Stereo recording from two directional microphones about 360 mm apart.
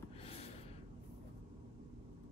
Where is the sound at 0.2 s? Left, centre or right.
Centre.